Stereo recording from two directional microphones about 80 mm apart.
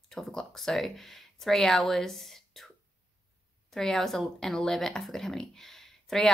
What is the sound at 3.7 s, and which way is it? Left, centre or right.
Speech, centre.